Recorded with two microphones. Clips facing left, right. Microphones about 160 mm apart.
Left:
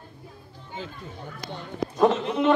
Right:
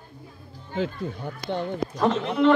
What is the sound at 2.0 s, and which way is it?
Speech, 20° left (ahead or behind).